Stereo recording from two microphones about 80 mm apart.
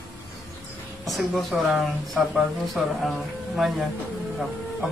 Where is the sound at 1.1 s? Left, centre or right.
Centre.